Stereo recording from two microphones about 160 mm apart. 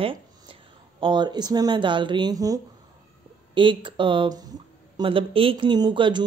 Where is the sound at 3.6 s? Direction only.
30° right (ahead or behind).